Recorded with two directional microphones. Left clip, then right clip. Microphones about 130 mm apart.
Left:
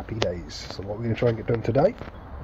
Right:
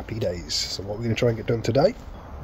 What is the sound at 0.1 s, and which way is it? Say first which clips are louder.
Speech: right 1 dB; 25° right (ahead or behind).